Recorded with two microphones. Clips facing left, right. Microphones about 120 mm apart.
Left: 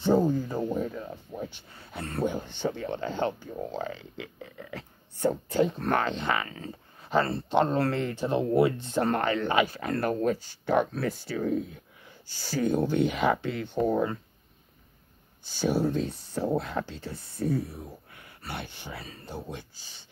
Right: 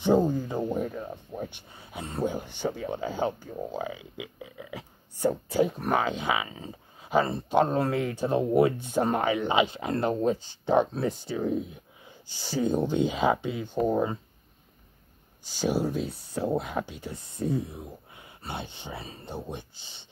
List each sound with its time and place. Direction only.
0.0 s a sound: 15° right (ahead or behind)
1.7 s speech: 15° right (ahead or behind)
15.4 s speech: 10° right (ahead or behind)